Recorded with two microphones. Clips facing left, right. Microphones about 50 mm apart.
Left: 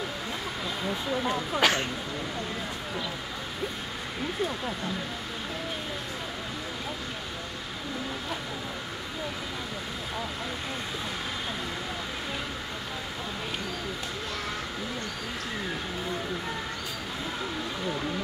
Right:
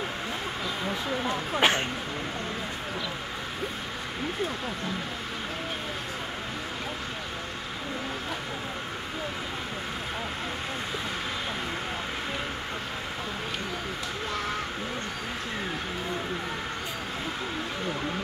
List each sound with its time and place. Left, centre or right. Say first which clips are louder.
1.3 s speech: right 1 dB; right